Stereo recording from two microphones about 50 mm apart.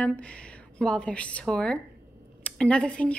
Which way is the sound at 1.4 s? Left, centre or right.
Centre.